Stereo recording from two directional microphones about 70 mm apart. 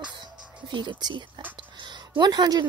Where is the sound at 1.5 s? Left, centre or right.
Right.